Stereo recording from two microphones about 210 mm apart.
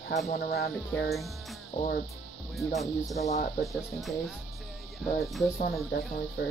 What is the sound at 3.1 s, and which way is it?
Speech, 30° left (ahead or behind).